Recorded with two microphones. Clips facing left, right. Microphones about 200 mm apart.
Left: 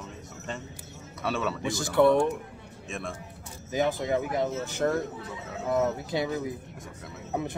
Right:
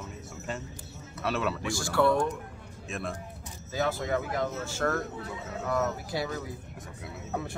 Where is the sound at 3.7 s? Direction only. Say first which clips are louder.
Left 3 dB; 20° left (ahead or behind).